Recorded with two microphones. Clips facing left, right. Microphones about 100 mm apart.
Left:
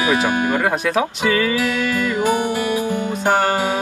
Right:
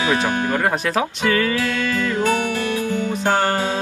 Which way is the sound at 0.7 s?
Centre (ahead or behind).